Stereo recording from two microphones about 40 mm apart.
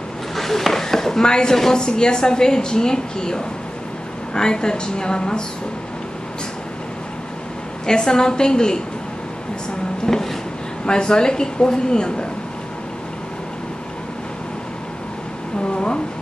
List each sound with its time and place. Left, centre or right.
0.4 s speech: centre
7.8 s speech: centre
10.1 s drawer open or close: centre
10.9 s speech: left
15.7 s a sound: left